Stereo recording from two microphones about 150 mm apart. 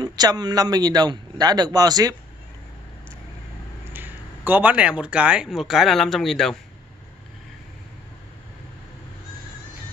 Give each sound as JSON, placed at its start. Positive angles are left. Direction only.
{"t": 0.0, "sound": "a man's voice", "side_deg": -25}
{"t": 3.9, "sound": "speech", "side_deg": -10}